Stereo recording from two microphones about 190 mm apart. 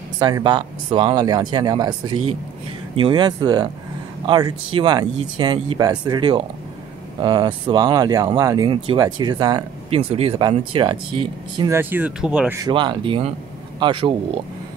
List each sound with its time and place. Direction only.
0.2 s speech: 25° right (ahead or behind)
11.7 s speech: 10° right (ahead or behind)
12.5 s speech: 25° right (ahead or behind)